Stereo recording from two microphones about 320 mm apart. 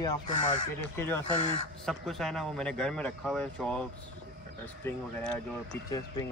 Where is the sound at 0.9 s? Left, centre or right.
Centre.